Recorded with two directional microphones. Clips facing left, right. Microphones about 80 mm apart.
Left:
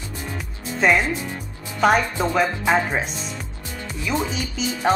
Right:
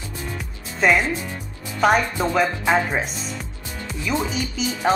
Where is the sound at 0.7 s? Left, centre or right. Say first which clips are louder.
Even; centre.